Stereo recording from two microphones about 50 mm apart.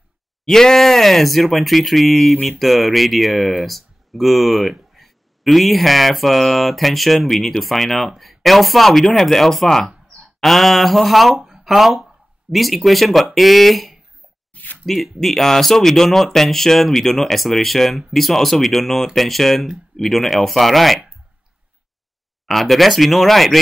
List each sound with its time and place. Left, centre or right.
0.5 s speech: centre
14.5 s a sound: left
14.9 s speech: centre
22.5 s speech: centre